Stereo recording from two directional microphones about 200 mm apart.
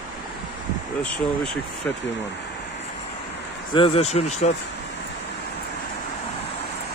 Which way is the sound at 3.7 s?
30° left (ahead or behind).